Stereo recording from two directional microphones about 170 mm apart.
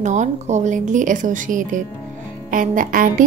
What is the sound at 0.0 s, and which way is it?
Speech, 45° right (ahead or behind).